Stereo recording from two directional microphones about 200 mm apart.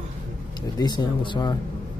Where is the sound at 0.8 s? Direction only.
20° left (ahead or behind).